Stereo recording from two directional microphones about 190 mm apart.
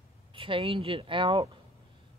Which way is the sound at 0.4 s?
30° right (ahead or behind).